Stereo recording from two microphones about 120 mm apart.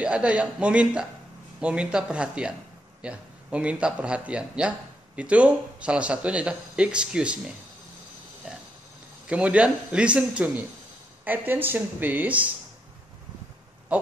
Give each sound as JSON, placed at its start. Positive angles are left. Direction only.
{"t": 0.0, "sound": "speech", "side_deg": -10}
{"t": 8.5, "sound": "a sound", "side_deg": -10}
{"t": 9.3, "sound": "speech", "side_deg": -10}